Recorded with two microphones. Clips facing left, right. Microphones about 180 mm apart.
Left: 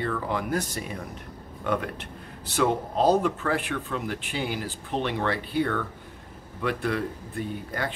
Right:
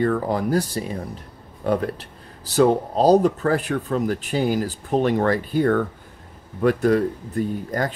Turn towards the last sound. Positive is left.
turn(degrees=-40)  # may be behind; listen again after turning